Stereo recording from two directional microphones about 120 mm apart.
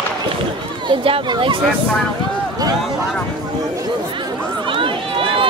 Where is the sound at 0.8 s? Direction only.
50° right (ahead or behind).